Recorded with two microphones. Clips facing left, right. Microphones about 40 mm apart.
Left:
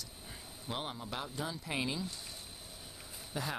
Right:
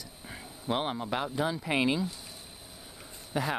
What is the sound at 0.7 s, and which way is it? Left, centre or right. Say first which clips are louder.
Speech: right 10 dB; right.